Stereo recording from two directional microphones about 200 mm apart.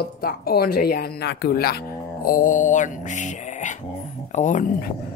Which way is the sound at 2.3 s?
40° left (ahead or behind).